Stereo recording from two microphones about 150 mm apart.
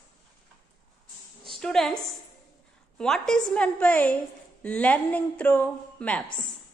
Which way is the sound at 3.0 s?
5° left (ahead or behind).